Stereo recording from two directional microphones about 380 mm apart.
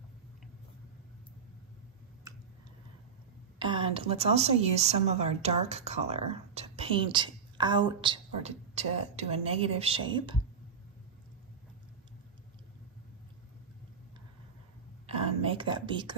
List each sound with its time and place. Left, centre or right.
2.3 s tick-tock: centre
3.5 s a woman's voice: centre
15.0 s a sound: centre